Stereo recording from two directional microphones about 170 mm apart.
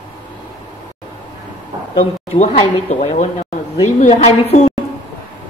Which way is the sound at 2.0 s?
35° left (ahead or behind).